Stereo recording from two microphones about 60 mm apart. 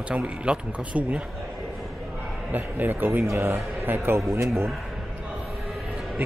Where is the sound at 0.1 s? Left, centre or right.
Right.